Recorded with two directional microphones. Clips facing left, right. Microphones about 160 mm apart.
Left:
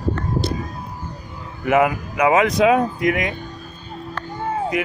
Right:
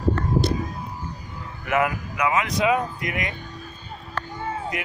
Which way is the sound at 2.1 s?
90° left.